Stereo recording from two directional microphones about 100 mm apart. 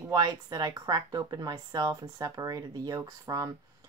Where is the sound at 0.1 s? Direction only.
40° right (ahead or behind).